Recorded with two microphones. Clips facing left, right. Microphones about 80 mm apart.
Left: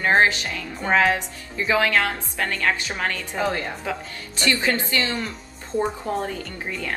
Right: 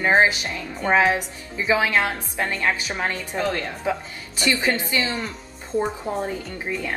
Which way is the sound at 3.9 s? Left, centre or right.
Centre.